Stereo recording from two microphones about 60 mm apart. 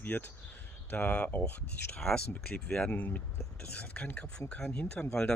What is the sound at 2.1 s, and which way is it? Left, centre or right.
Speech, centre.